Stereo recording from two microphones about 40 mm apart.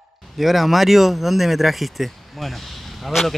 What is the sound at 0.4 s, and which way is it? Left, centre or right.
Speech, centre.